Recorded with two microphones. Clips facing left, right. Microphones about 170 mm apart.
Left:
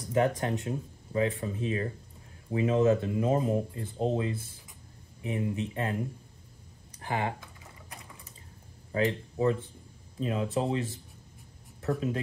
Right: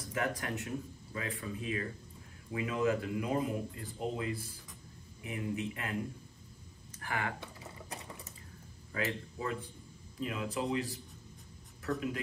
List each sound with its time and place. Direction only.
0.1 s a man's voice: 25° left (ahead or behind)
6.9 s a sound: 20° left (ahead or behind)
8.9 s speech: 30° left (ahead or behind)